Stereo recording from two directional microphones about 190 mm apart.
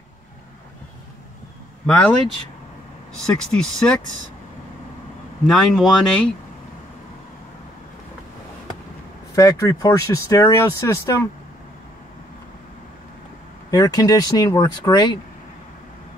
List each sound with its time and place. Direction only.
1.9 s speech: 5° left (ahead or behind)
3.3 s speech: 5° left (ahead or behind)
5.5 s speech: centre (ahead or behind)
9.3 s speech: 20° left (ahead or behind)
13.7 s speech: 20° left (ahead or behind)